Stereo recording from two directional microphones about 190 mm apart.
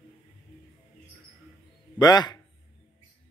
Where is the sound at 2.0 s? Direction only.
20° left (ahead or behind).